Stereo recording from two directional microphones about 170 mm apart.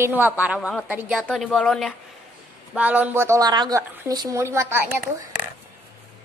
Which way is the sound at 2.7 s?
10° right (ahead or behind).